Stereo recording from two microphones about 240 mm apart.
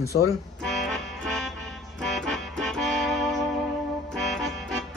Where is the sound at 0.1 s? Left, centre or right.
Left.